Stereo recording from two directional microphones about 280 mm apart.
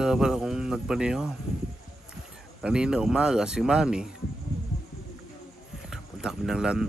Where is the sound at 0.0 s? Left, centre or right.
Centre.